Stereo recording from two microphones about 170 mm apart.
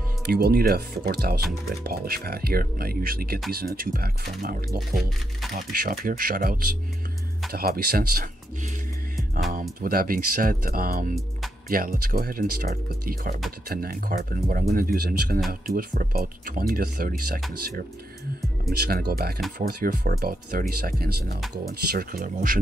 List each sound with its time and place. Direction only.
0.3 s speech: 65° right (ahead or behind)
9.5 s speech: 55° right (ahead or behind)
18.7 s speech: 65° right (ahead or behind)